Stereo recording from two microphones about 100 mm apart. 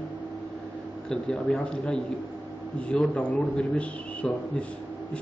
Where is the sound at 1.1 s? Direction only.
10° left (ahead or behind).